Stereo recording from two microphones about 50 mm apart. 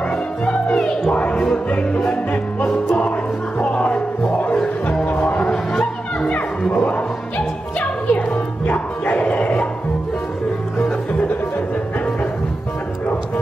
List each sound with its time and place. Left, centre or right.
1.1 s music: left
3.5 s music: left
5.5 s music: centre
6.7 s music: left